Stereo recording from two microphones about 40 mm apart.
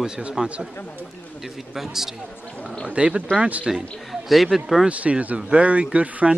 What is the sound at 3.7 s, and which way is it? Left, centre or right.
Speech, centre.